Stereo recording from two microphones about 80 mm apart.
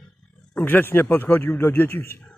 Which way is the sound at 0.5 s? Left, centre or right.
Left.